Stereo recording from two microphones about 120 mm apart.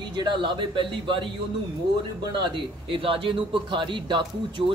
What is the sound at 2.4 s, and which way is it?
Speech, 45° right (ahead or behind).